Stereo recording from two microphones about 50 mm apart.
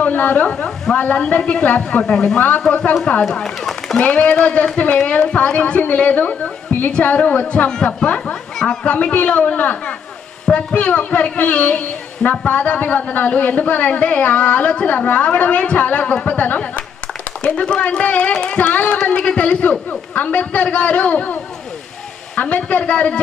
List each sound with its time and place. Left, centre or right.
0.0 s a sound: left
0.9 s a man's voice: left
2.0 s speech: centre
2.3 s a man's voice: left; by 4.0 s centre
4.0 s a man's voice: left
5.8 s a man's voice: left; by 8.9 s centre
8.9 s a man's voice: left
22.6 s a man's voice: left